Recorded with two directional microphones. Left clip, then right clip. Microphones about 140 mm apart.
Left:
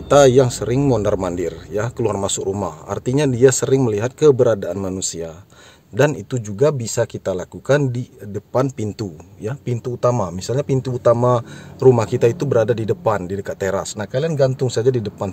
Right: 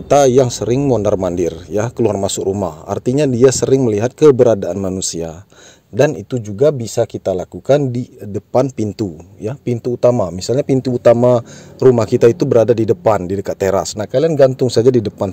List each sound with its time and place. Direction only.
0.1 s a man's voice: 25° right (ahead or behind)
1.3 s a man's voice: 35° right (ahead or behind)
5.9 s a man's voice: 15° right (ahead or behind); by 15.2 s 40° right (ahead or behind)